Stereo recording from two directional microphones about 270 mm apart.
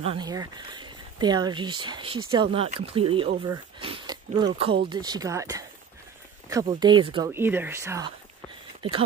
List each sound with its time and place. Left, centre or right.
0.0 s speech: centre